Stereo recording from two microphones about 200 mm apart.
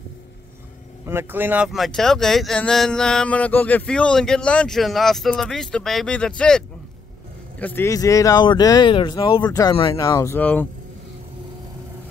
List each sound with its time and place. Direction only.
1.0 s speech: 10° right (ahead or behind); by 10.7 s 10° left (ahead or behind)